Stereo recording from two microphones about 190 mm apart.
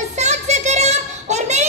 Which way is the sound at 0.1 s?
35° right (ahead or behind).